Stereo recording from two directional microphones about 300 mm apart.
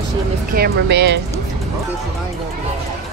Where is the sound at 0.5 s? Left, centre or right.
Right.